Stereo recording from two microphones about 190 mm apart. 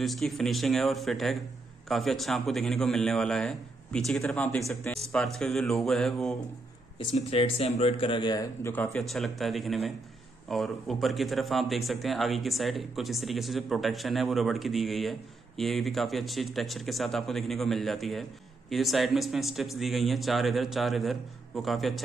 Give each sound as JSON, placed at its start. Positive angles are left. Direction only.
{"t": 0.0, "sound": "speech", "side_deg": 0}
{"t": 7.0, "sound": "a man's voice", "side_deg": 30}
{"t": 8.8, "sound": "speech", "side_deg": 0}